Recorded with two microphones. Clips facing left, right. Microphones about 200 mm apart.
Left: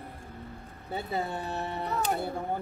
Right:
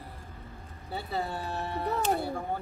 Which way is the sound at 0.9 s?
20° left (ahead or behind).